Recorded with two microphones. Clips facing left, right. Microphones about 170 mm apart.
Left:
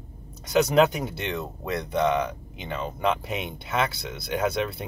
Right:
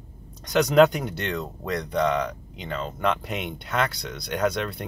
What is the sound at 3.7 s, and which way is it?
Speech, 5° left (ahead or behind).